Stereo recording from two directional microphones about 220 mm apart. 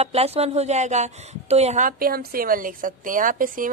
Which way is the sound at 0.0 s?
30° right (ahead or behind).